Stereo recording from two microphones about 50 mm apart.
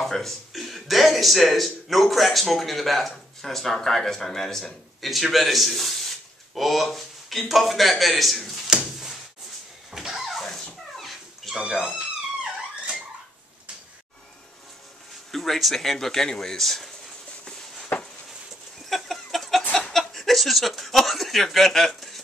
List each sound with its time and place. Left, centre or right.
0.0 s speech: centre
9.8 s dog: centre
11.7 s speech: centre
15.3 s speech: centre
17.9 s a sound: left
18.9 s chicken: centre
19.9 s a sound: centre